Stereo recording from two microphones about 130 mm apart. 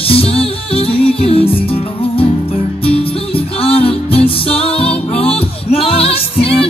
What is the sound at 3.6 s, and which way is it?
Music, 45° left (ahead or behind).